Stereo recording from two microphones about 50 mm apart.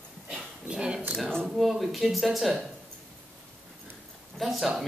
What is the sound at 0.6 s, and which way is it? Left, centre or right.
Speech, centre.